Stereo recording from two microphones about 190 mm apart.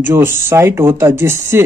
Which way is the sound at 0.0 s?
10° right (ahead or behind).